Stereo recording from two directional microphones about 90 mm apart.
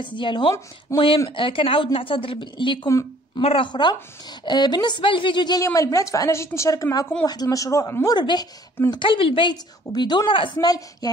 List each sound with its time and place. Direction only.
0.0 s a woman's voice: 65° left (ahead or behind)
3.3 s speech: 80° left; by 3.9 s 65° left (ahead or behind)
4.5 s a woman's voice: 50° left (ahead or behind)
5.8 s a woman's voice: 40° left (ahead or behind)
8.2 s a woman's voice: 55° left (ahead or behind)
8.9 s a woman's voice: 70° left (ahead or behind); by 11.1 s 45° left (ahead or behind)